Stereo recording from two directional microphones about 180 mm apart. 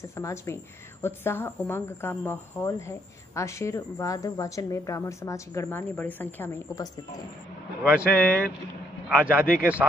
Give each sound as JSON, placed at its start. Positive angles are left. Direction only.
{"t": 0.1, "sound": "speech", "side_deg": 15}
{"t": 7.8, "sound": "speech", "side_deg": -5}